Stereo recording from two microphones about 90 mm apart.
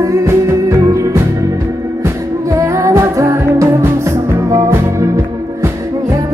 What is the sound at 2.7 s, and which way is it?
Music, 30° right (ahead or behind).